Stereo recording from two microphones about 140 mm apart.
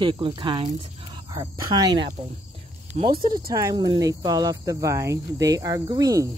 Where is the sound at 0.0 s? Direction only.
35° right (ahead or behind).